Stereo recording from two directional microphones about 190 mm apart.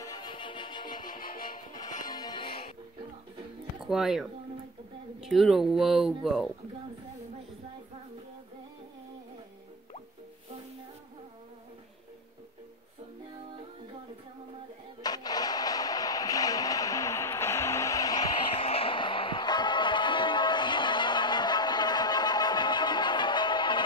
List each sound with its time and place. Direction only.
0.0 s music: 20° left (ahead or behind)
1.1 s music: 45° left (ahead or behind)
2.0 s music: 20° left (ahead or behind)
3.8 s speech: centre (ahead or behind)
15.0 s a sound: 20° left (ahead or behind)
18.7 s music: 30° left (ahead or behind)